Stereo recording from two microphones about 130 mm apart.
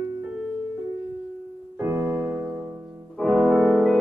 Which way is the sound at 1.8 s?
15° right (ahead or behind).